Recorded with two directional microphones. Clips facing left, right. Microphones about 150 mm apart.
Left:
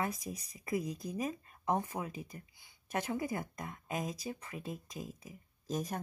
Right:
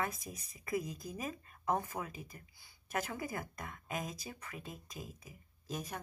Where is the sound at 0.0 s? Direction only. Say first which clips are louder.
Left 2 dB; 35° left (ahead or behind).